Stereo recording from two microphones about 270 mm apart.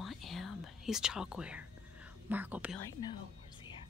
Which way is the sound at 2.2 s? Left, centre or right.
Centre.